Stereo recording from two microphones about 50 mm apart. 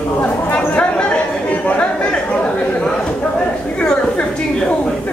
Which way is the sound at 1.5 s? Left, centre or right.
Left.